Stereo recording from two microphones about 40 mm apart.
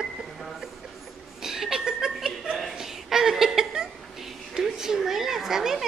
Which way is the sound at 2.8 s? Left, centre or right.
Centre.